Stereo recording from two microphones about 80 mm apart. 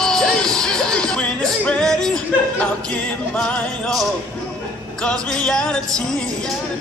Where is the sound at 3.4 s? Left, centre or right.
Centre.